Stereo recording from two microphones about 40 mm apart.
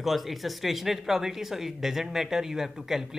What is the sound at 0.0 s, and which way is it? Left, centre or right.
Speech, centre.